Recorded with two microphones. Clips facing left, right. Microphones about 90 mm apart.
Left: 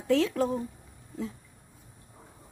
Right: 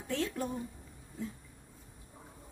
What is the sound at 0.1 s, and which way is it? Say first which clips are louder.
Speech: left 10 dB; 90° left.